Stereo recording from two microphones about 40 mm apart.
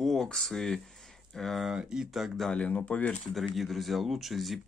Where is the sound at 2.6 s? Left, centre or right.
Left.